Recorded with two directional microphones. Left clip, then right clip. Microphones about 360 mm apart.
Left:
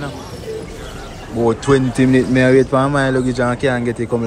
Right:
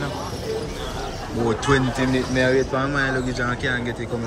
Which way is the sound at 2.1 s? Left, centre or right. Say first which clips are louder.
Left 8 dB; centre.